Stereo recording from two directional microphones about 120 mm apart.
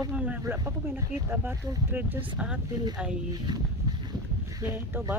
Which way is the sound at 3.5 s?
35° right (ahead or behind).